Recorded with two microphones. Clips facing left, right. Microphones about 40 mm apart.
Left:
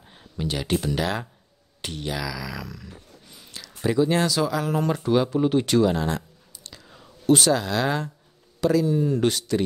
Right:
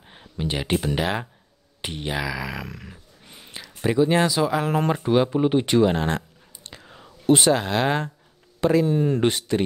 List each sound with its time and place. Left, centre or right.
0.1 s speech: right
3.3 s a sound: right
3.6 s speech: right
4.9 s speech: right